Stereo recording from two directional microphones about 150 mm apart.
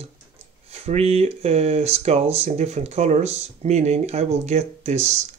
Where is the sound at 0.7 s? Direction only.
45° right (ahead or behind).